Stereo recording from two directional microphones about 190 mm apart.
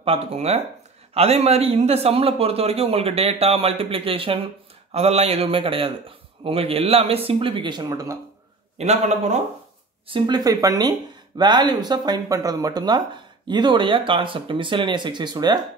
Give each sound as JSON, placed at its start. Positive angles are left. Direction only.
{"t": 0.0, "sound": "a man's voice", "side_deg": -30}
{"t": 8.7, "sound": "a man's voice", "side_deg": -35}
{"t": 10.0, "sound": "speech", "side_deg": -25}